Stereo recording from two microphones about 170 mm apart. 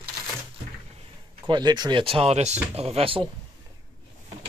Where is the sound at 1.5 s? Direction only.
25° right (ahead or behind).